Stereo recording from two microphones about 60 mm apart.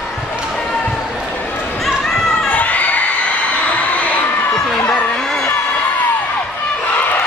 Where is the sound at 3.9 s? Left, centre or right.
Left.